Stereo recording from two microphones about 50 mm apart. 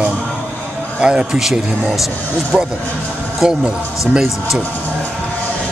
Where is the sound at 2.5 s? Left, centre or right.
Centre.